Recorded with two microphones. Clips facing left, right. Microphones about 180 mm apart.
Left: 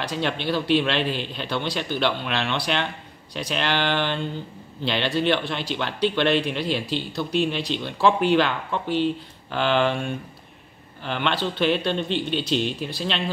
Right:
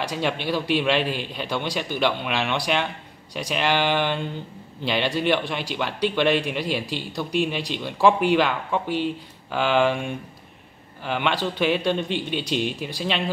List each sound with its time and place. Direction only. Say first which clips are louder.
0.0 s speech: even; 10° right (ahead or behind)